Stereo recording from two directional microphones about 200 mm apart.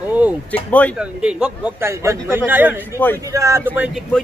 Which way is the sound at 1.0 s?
5° right (ahead or behind).